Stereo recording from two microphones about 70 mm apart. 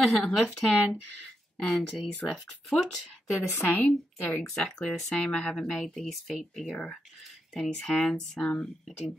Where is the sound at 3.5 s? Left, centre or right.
Left.